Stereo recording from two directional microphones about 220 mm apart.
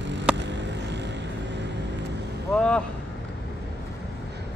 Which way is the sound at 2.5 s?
5° left (ahead or behind).